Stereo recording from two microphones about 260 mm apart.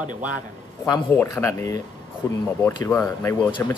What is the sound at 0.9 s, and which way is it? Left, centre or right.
Speech, centre.